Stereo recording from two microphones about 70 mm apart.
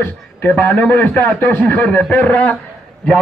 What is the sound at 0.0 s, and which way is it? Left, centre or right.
A man's voice, left.